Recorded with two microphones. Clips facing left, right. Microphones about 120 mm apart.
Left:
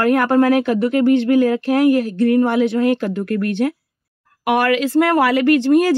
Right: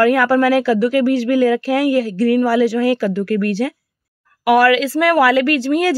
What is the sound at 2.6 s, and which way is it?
Speech, 25° left (ahead or behind).